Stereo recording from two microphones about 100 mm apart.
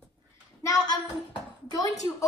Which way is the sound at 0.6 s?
40° left (ahead or behind).